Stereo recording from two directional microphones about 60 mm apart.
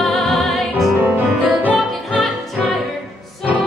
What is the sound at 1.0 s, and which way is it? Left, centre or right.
Music, right.